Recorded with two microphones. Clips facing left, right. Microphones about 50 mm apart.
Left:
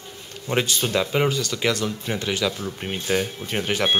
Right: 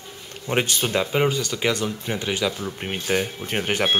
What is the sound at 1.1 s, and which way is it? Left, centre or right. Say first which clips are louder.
Speech: even; centre.